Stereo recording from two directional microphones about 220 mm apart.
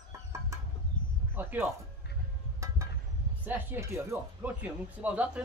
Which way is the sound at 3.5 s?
10° right (ahead or behind).